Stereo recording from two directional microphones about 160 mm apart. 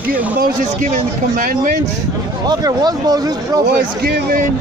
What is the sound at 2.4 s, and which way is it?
Speech, 25° right (ahead or behind).